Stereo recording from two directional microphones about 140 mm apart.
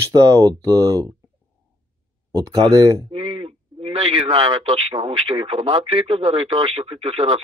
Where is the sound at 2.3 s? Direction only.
25° right (ahead or behind).